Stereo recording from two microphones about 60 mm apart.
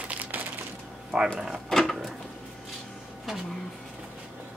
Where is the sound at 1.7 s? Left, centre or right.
Centre.